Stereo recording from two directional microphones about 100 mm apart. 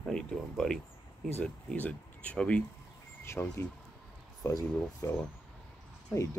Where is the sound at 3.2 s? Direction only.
25° left (ahead or behind).